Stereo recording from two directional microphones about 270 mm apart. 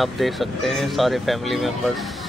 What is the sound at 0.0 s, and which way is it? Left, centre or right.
Speech, centre.